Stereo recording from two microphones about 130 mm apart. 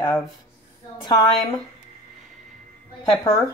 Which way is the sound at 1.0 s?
30° left (ahead or behind).